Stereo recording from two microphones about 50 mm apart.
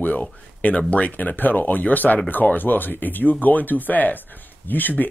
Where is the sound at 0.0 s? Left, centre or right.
Left.